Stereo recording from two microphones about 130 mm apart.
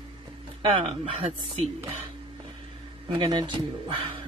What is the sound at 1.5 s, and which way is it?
Speech, 50° right (ahead or behind).